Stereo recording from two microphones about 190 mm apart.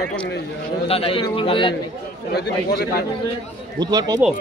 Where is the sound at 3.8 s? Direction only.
20° right (ahead or behind).